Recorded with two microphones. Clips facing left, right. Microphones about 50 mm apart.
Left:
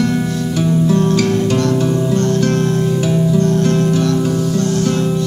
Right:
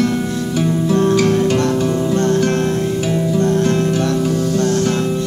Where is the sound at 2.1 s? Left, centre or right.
Right.